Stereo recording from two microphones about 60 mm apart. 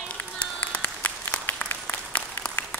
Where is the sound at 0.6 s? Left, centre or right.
Left.